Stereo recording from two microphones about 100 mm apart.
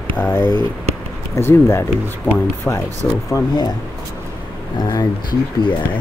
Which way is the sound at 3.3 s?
35° left (ahead or behind).